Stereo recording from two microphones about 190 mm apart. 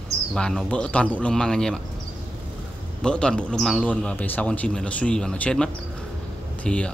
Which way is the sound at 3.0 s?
5° left (ahead or behind).